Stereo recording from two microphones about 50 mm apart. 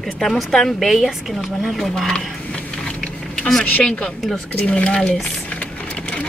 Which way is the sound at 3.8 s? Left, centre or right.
Centre.